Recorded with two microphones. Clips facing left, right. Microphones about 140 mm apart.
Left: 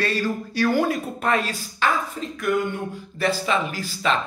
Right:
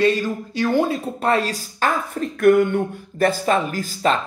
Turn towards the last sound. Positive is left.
turn(degrees=-45)  # may be behind; listen again after turning